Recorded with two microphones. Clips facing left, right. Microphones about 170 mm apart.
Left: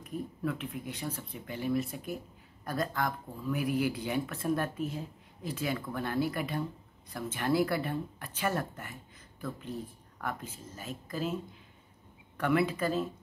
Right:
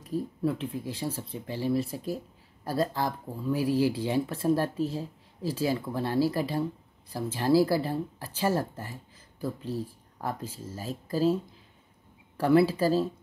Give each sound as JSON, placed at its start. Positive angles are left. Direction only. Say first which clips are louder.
{"t": 0.0, "sound": "speech", "louder": "right 6 dB", "side_deg": -30}
{"t": 12.4, "sound": "speech", "louder": "right 6 dB", "side_deg": -30}